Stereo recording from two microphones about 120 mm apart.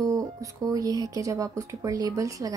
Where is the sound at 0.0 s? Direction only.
30° right (ahead or behind).